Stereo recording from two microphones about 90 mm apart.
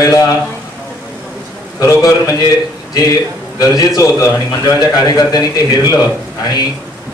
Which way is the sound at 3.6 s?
45° left (ahead or behind).